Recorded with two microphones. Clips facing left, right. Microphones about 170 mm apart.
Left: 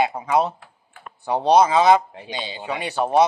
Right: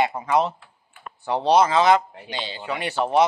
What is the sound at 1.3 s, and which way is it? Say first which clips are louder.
A man's voice: left 2 dB; 15° left (ahead or behind).